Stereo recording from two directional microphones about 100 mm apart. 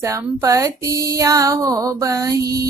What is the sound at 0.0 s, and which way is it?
Child singing, 30° right (ahead or behind).